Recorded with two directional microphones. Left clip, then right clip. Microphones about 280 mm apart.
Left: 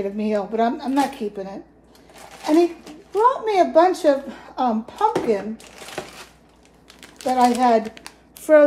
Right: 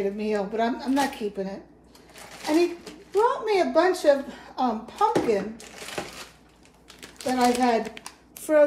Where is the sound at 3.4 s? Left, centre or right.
Left.